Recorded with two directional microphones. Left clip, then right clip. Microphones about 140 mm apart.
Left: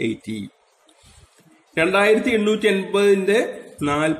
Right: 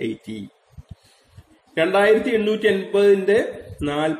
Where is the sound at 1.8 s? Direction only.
35° left (ahead or behind).